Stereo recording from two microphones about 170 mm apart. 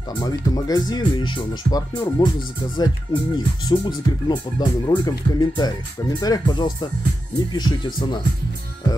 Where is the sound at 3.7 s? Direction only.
25° left (ahead or behind).